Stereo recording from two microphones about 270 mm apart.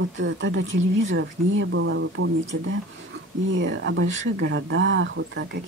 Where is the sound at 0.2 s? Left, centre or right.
Right.